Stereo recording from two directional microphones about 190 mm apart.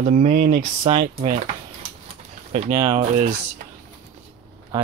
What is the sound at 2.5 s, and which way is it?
Speech, 35° right (ahead or behind).